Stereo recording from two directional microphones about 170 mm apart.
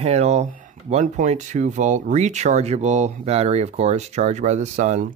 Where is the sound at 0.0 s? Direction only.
40° right (ahead or behind).